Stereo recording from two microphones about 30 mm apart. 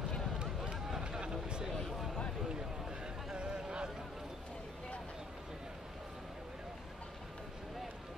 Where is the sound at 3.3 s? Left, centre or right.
Right.